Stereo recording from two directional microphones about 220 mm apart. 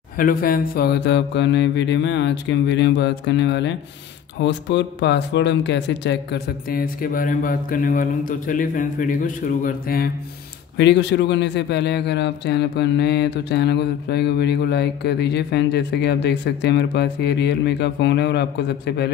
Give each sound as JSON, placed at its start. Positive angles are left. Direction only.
{"t": 0.2, "sound": "a man's voice", "side_deg": 40}
{"t": 10.8, "sound": "a man's voice", "side_deg": 55}